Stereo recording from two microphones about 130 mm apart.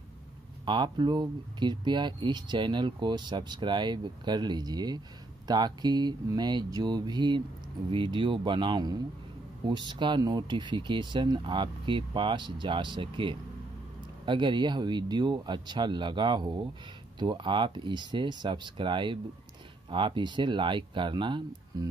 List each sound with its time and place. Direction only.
0.7 s speech: 35° right (ahead or behind)